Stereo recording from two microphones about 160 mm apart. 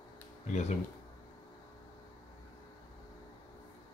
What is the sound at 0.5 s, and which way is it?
Speech, 45° left (ahead or behind).